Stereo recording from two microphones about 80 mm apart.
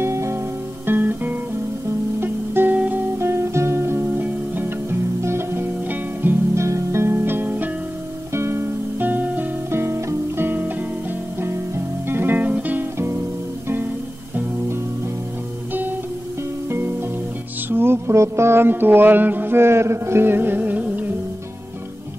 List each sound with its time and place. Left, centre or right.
0.0 s music: right
0.8 s guitar: right
2.1 s music: right
3.2 s music: right
6.6 s music: right
8.3 s music: right
16.6 s music: right